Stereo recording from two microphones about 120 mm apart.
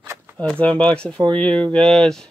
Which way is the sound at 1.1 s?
40° right (ahead or behind).